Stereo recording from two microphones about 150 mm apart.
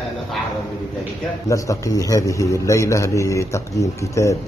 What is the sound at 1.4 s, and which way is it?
A man's voice, 20° left (ahead or behind).